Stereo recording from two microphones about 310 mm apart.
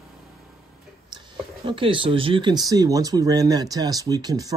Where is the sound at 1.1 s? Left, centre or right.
Centre.